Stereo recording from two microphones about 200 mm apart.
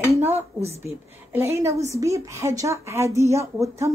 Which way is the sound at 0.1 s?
10° right (ahead or behind).